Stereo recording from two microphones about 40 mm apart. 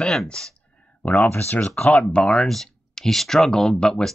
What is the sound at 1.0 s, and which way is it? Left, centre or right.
Speech, left.